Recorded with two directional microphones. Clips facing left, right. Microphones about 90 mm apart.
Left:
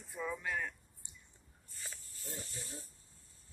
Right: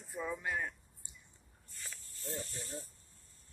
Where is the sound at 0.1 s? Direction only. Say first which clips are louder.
Right 1 dB; 15° right (ahead or behind).